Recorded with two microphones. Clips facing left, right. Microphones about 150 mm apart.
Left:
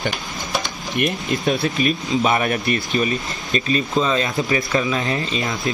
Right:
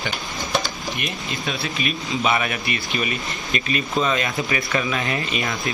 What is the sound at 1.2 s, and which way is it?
Speech, 45° left (ahead or behind).